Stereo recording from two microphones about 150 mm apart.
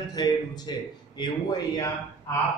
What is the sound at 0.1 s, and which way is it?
Speech, 30° left (ahead or behind).